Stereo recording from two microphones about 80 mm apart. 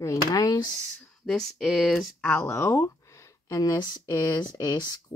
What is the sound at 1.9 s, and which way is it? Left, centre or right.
Speech, centre.